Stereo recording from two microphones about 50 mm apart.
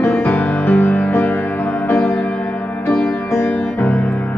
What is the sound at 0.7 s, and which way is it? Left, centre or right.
Music, left.